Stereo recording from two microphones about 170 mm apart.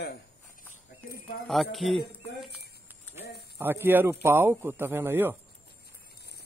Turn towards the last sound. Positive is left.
turn(degrees=-15)  # may be behind; listen again after turning